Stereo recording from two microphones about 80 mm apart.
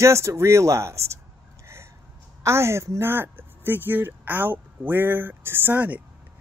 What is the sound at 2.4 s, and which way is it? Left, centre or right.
Speech, right.